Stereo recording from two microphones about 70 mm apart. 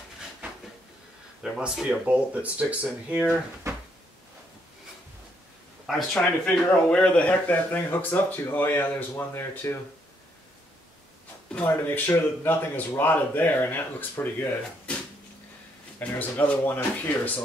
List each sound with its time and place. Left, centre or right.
1.6 s speech: centre
5.9 s speech: centre
6.7 s speech: centre
9.3 s speech: left
11.6 s speech: left
14.9 s a sound: centre
16.2 s speech: left